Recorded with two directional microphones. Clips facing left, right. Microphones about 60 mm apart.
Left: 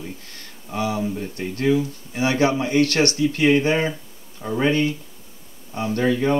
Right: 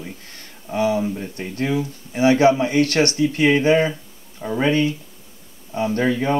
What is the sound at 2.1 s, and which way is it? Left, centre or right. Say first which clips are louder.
Speech: right 5 dB; right.